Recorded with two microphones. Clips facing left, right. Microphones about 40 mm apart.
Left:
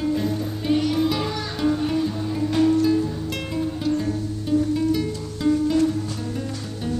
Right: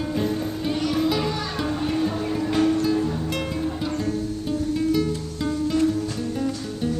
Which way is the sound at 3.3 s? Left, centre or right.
Centre.